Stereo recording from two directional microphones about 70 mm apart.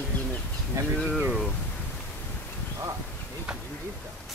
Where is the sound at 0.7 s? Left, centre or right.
Right.